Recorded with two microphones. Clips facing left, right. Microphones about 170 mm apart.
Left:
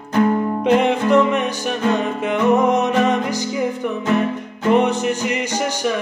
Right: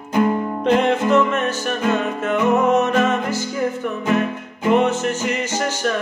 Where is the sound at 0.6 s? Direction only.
10° left (ahead or behind).